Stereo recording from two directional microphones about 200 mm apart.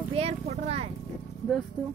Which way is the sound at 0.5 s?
30° right (ahead or behind).